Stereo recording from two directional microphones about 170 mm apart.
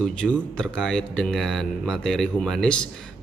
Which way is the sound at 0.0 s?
5° left (ahead or behind).